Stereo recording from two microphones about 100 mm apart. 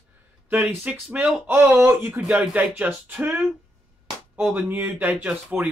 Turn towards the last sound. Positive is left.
turn(degrees=-15)  # may be behind; listen again after turning